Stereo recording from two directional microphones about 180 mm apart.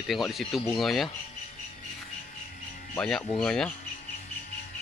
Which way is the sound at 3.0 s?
5° left (ahead or behind).